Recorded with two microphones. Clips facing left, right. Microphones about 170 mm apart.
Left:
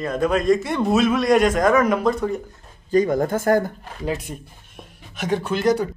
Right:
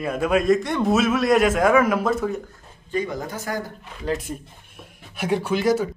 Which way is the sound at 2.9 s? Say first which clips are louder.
Left 8 dB; 45° left (ahead or behind).